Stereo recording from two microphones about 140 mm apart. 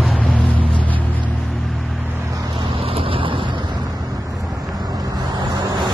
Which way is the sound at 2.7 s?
40° right (ahead or behind).